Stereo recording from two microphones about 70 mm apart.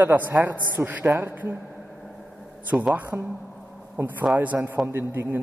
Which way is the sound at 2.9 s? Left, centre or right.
Right.